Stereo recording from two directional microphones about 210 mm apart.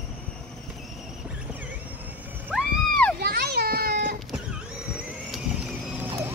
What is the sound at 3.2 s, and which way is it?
Children playing, 50° right (ahead or behind).